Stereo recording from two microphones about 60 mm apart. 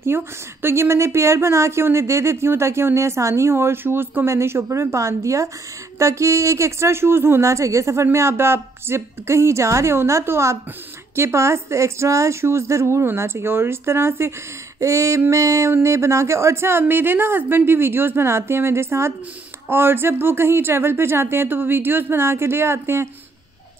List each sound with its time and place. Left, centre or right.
0.0 s a woman's voice: right
4.3 s a woman's voice: right
14.8 s female singing: right
15.7 s a woman's voice: right